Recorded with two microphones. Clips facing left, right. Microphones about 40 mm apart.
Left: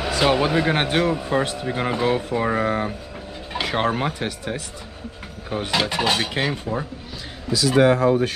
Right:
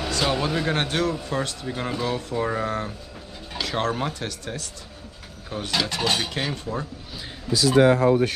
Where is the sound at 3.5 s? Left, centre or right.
Left.